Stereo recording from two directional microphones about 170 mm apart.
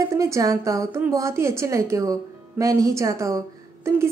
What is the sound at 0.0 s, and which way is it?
A woman's voice, 15° right (ahead or behind).